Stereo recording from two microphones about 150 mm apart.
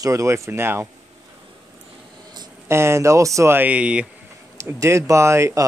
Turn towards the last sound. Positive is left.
turn(degrees=-20)  # may be behind; listen again after turning